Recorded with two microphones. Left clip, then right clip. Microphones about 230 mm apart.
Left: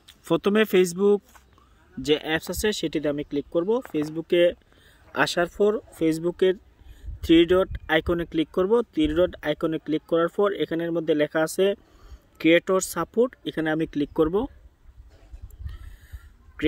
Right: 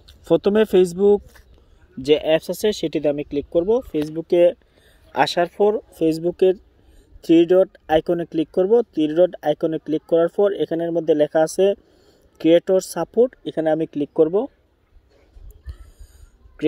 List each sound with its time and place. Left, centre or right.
0.0 s speech: centre
4.5 s a sound: centre
5.9 s speech: centre
13.4 s speech: centre